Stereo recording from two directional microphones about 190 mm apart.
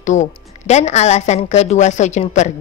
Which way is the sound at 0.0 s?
40° left (ahead or behind).